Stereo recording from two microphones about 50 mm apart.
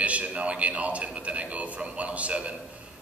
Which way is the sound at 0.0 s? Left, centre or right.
Right.